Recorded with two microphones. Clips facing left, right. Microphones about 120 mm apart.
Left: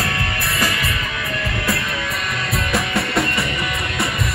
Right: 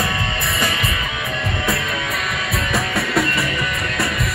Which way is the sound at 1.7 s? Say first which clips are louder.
Even; centre (ahead or behind).